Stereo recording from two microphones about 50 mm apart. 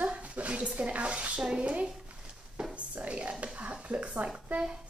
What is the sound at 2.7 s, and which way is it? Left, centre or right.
Whispering, right.